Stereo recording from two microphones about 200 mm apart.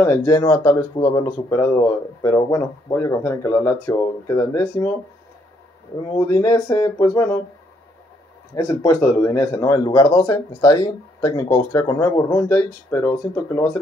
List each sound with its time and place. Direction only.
0.0 s speech: 20° left (ahead or behind)
6.1 s speech: 20° left (ahead or behind)
8.5 s speech: 15° left (ahead or behind)